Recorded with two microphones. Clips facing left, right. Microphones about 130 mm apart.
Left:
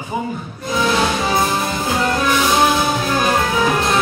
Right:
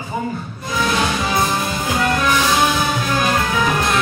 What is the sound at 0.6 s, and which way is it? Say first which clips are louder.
Music: left 2 dB; 25° left (ahead or behind).